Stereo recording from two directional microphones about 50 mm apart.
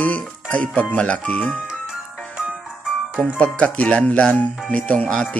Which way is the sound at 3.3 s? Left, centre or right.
Left.